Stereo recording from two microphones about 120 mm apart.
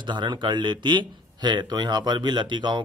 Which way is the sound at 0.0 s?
40° right (ahead or behind).